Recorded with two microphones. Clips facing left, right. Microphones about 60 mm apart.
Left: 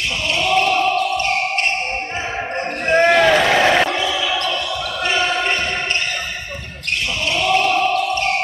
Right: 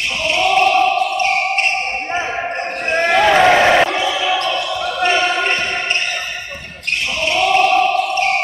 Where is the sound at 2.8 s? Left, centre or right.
Centre.